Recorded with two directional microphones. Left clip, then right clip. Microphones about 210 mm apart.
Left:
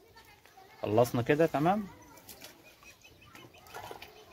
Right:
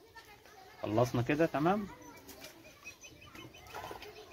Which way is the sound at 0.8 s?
55° left (ahead or behind).